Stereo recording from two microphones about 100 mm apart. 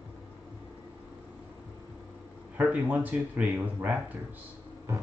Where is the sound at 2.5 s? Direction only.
15° right (ahead or behind).